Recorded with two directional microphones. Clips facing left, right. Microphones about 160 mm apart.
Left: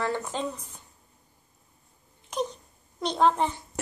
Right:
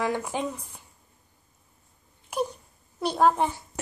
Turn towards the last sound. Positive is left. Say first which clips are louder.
# right 1 dB
turn(degrees=-10)  # may be behind; listen again after turning